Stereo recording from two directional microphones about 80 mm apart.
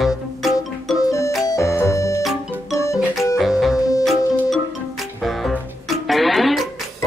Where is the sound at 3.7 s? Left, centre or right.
Left.